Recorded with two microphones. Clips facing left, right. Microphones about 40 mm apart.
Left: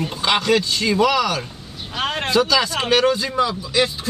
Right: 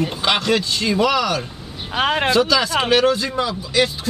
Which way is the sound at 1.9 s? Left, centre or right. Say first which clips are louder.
Right 5 dB; centre.